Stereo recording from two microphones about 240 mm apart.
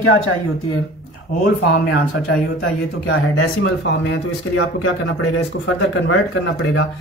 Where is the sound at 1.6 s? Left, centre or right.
Left.